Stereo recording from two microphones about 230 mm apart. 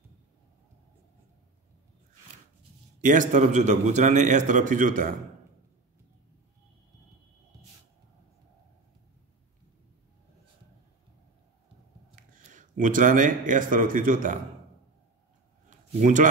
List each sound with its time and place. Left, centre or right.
3.0 s a man's voice: right
12.2 s speech: right
16.0 s a man's voice: right